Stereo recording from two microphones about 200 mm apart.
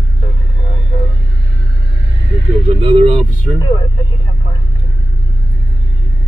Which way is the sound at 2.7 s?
25° right (ahead or behind).